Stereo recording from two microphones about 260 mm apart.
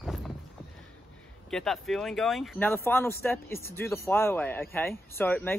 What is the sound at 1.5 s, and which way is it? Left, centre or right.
Speech, centre.